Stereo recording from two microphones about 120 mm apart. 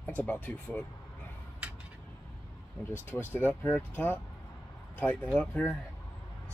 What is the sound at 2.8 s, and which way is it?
Speech, 15° left (ahead or behind).